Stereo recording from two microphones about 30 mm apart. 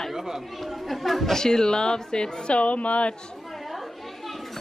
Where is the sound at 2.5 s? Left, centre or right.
Left.